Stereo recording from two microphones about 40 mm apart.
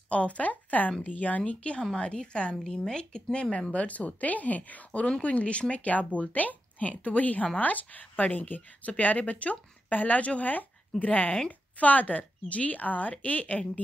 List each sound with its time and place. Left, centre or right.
0.1 s speech: left
1.4 s speech: left
2.6 s speech: centre
3.5 s speech: left